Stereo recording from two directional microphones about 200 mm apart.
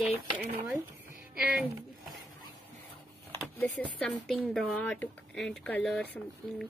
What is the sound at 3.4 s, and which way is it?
Speech, 5° left (ahead or behind).